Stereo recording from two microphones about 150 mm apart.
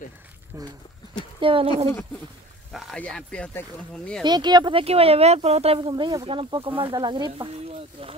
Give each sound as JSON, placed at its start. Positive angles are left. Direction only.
{"t": 0.5, "sound": "speech", "side_deg": -20}
{"t": 1.4, "sound": "speech", "side_deg": -35}
{"t": 2.7, "sound": "speech", "side_deg": 0}
{"t": 4.2, "sound": "speech", "side_deg": -30}